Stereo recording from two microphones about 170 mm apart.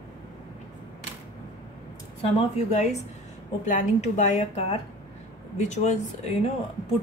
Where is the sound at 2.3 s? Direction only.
35° left (ahead or behind).